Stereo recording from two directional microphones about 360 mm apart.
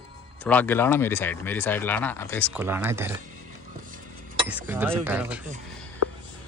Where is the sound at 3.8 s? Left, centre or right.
Right.